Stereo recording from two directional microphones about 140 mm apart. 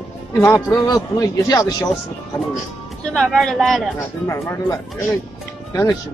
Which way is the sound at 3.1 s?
Centre (ahead or behind).